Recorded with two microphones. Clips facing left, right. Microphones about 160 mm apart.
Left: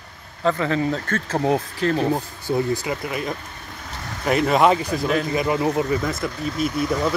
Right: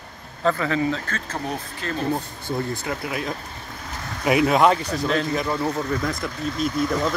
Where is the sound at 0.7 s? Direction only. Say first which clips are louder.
Left 1 dB; 45° left (ahead or behind).